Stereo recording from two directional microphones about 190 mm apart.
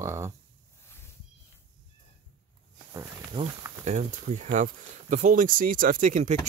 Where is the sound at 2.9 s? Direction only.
15° right (ahead or behind).